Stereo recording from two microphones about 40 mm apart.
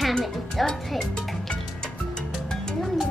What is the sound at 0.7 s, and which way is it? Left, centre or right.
Music, left.